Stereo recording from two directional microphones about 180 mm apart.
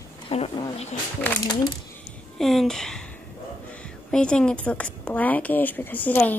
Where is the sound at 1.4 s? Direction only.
20° left (ahead or behind).